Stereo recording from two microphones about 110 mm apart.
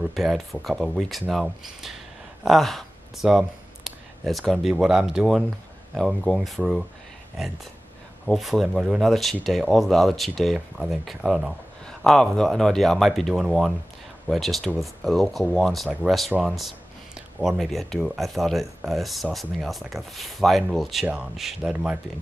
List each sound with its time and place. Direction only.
0.0 s speech: centre (ahead or behind)
8.3 s speech: centre (ahead or behind)